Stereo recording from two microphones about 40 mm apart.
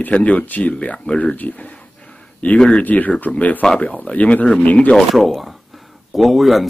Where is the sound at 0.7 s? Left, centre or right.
Left.